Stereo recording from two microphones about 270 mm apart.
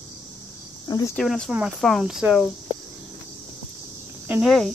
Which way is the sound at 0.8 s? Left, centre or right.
Centre.